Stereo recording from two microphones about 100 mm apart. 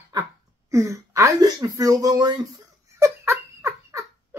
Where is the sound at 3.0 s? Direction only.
30° right (ahead or behind).